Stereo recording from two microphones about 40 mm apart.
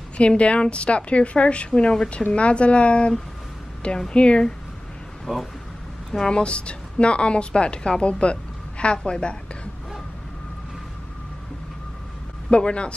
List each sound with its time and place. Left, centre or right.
0.2 s a woman's voice: left
6.1 s a woman's voice: left
12.4 s a woman's voice: left